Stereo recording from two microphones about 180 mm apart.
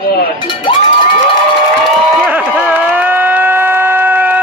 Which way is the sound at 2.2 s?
5° right (ahead or behind).